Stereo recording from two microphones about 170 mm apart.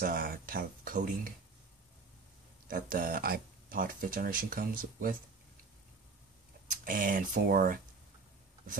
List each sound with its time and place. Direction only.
0.0 s speech: 60° right (ahead or behind)
2.7 s speech: 55° right (ahead or behind)
6.7 s speech: 55° right (ahead or behind)